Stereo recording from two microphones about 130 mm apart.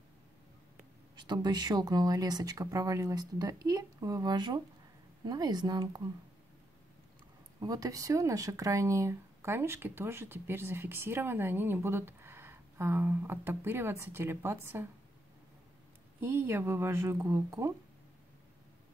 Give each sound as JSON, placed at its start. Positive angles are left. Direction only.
{"t": 1.1, "sound": "speech", "side_deg": -35}
{"t": 7.6, "sound": "speech", "side_deg": -25}
{"t": 16.2, "sound": "speech", "side_deg": -15}